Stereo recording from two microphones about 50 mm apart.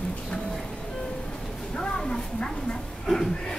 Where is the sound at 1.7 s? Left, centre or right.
Centre.